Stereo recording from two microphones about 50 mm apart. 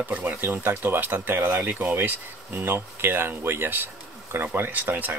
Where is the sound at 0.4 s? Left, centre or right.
Right.